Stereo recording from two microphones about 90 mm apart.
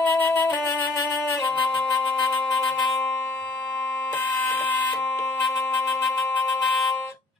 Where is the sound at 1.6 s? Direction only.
60° left (ahead or behind).